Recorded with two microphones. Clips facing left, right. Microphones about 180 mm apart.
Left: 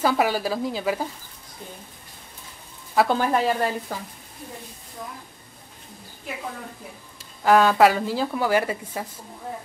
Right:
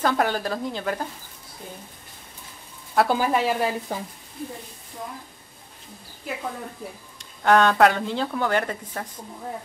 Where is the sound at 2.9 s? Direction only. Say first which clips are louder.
Even; 5° right (ahead or behind).